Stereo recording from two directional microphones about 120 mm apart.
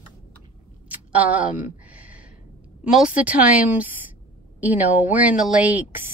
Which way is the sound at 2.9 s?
5° right (ahead or behind).